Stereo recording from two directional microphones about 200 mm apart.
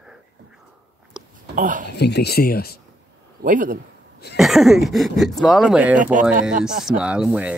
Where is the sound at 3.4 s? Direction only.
40° right (ahead or behind).